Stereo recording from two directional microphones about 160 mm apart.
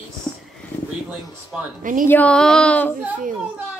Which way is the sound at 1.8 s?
55° right (ahead or behind).